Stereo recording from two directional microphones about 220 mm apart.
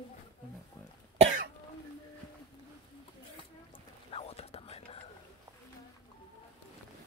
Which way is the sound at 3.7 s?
25° left (ahead or behind).